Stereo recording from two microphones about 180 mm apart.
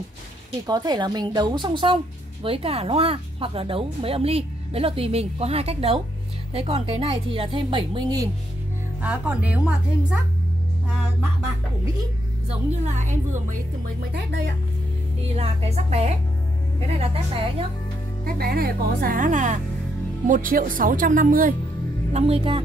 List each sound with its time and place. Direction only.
0.7 s speech: 20° right (ahead or behind)
9.0 s a woman's voice: 5° right (ahead or behind)
12.4 s speech: 40° right (ahead or behind)
14.1 s speech: 65° right (ahead or behind)
15.3 s speech: 35° right (ahead or behind)
18.2 s speech: 60° right (ahead or behind)
22.1 s speech: 35° right (ahead or behind)